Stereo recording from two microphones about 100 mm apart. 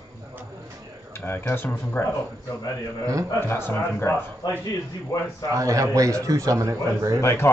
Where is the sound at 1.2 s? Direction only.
20° left (ahead or behind).